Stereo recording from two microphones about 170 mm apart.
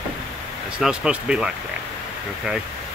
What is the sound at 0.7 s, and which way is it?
Speech, 5° right (ahead or behind).